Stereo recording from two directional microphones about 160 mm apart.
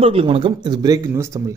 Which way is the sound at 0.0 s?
35° right (ahead or behind).